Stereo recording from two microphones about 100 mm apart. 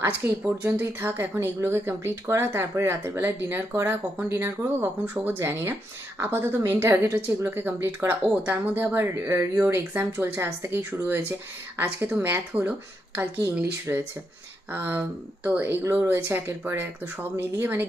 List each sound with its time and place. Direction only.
0.0 s speech: 20° right (ahead or behind)